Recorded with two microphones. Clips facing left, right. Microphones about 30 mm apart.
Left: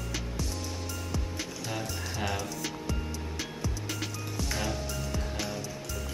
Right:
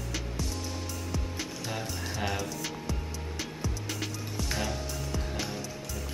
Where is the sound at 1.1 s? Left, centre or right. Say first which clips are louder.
Right 1 dB; centre.